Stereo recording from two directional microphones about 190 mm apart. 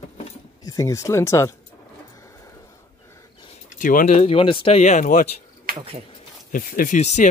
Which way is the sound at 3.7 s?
45° left (ahead or behind).